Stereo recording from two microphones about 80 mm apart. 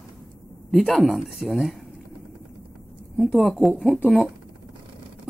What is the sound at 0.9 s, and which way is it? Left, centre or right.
Speech, centre.